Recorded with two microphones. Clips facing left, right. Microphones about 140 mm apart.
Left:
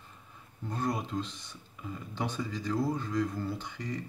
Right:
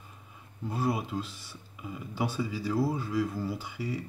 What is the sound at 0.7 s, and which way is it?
Speech, 5° right (ahead or behind).